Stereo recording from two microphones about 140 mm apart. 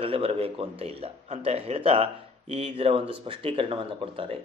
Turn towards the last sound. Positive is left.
turn(degrees=-40)  # may be behind; listen again after turning